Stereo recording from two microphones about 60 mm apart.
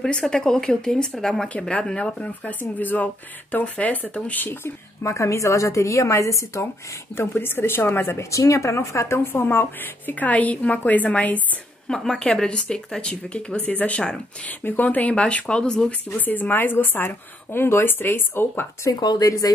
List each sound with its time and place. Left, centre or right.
0.0 s speech: centre
1.5 s speech: centre
2.4 s speech: left
5.0 s a woman's voice: left
7.2 s speech: left
8.2 s speech: left
11.9 s speech: centre
16.2 s speech: left
18.9 s speech: left